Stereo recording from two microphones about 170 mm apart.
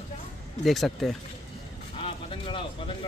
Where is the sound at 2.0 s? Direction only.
30° left (ahead or behind).